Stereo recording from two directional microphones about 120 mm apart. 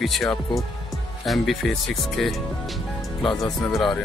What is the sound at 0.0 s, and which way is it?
Speech, centre (ahead or behind).